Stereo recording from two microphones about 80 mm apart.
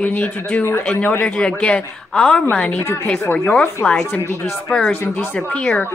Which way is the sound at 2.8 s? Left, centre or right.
Left.